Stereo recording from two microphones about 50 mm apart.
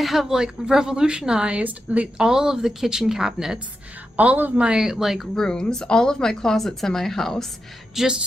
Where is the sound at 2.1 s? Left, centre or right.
Centre.